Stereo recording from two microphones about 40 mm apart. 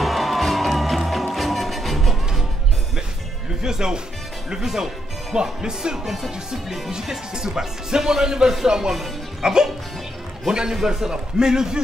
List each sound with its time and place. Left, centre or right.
0.0 s music: centre
3.6 s speech: centre
6.0 s speech: centre